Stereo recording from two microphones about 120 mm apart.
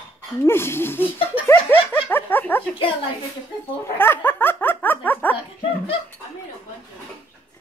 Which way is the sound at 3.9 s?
20° left (ahead or behind).